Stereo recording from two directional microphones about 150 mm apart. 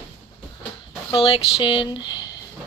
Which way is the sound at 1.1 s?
35° left (ahead or behind).